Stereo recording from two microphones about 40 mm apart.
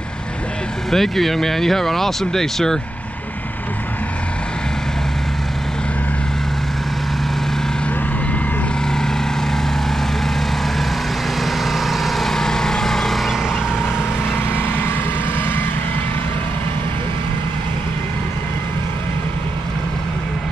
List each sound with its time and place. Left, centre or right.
0.9 s speech: centre
11.4 s vehicle: centre
14.8 s vehicle: left